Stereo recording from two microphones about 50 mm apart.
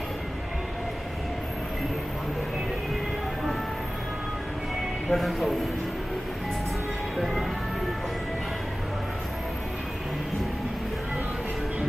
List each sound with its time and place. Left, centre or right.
5.1 s speech: centre